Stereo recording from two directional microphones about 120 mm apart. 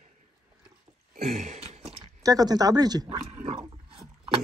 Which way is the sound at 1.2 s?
80° right.